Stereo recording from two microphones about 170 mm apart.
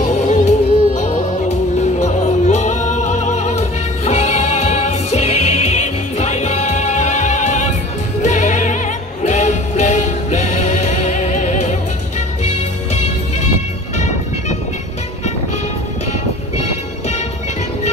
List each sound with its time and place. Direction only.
0.0 s music: 45° left (ahead or behind)